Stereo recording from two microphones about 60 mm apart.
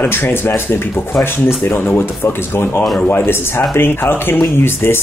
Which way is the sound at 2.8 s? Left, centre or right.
Centre.